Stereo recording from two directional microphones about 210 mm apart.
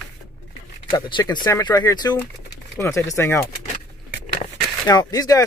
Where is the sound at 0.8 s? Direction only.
20° left (ahead or behind).